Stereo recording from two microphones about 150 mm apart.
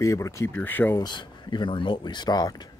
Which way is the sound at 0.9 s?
30° left (ahead or behind).